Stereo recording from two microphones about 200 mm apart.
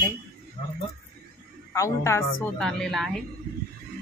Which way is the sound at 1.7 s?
15° left (ahead or behind).